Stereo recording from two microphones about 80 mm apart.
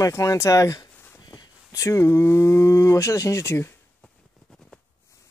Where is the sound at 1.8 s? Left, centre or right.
Left.